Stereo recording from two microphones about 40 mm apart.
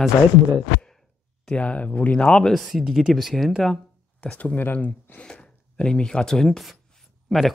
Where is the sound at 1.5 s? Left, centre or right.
Left.